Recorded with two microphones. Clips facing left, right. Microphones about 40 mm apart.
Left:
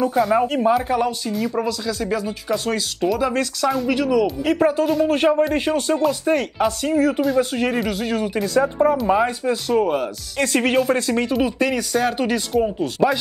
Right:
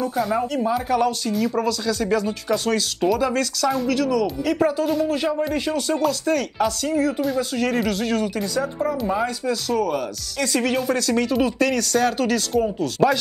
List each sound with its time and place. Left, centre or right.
0.3 s speech: left
0.8 s speech: centre
5.0 s speech: left
5.9 s speech: centre
7.7 s speech: centre
8.5 s speech: left
10.9 s speech: left